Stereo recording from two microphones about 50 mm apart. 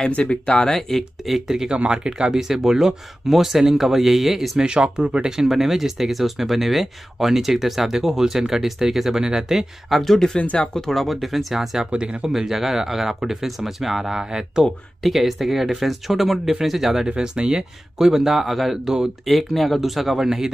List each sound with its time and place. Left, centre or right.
0.1 s speech: left; by 4.5 s centre
4.6 s speech: centre
5.5 s speech: centre
10.4 s speech: left
10.7 s speech: centre
11.9 s speech: centre
12.3 s speech: centre
15.0 s speech: centre